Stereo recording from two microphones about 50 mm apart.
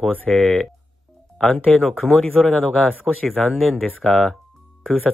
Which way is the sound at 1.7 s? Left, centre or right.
Centre.